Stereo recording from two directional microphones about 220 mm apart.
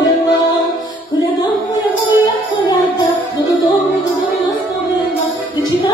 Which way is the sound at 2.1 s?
20° left (ahead or behind).